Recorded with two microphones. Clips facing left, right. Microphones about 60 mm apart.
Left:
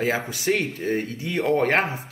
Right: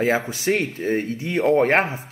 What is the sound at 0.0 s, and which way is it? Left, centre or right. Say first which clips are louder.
Speech: right 3 dB; right.